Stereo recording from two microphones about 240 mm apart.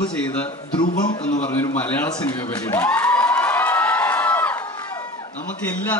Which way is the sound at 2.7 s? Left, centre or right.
Centre.